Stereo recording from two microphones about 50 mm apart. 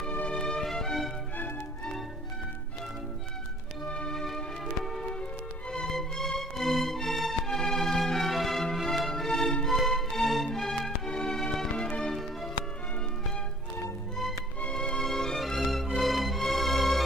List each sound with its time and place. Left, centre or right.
0.3 s music: centre
3.9 s music: centre
5.7 s music: centre
14.7 s music: centre